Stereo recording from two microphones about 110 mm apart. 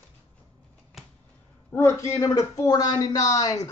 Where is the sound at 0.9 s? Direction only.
Centre (ahead or behind).